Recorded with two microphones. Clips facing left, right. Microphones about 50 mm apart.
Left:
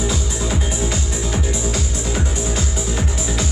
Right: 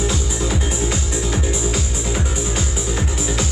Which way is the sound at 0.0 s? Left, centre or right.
Centre.